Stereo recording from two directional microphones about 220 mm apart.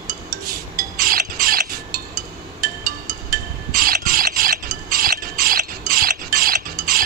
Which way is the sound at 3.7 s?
40° right (ahead or behind).